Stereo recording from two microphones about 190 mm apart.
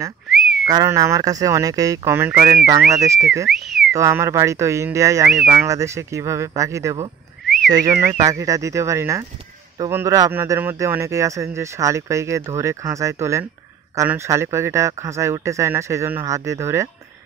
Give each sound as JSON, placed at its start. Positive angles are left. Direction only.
{"t": 0.3, "sound": "whistling", "side_deg": 0}
{"t": 0.7, "sound": "speech", "side_deg": -20}
{"t": 3.4, "sound": "whistling", "side_deg": 0}
{"t": 3.9, "sound": "speech", "side_deg": -15}
{"t": 5.3, "sound": "speech", "side_deg": -5}
{"t": 5.7, "sound": "speech", "side_deg": -15}